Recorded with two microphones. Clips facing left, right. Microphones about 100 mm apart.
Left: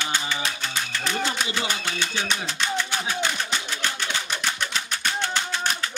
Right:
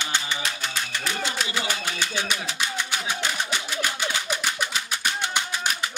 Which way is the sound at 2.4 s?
15° right (ahead or behind).